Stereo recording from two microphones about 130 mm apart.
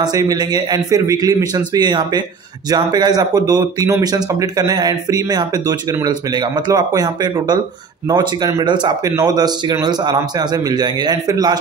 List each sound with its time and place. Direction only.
0.0 s a man's voice: 30° right (ahead or behind)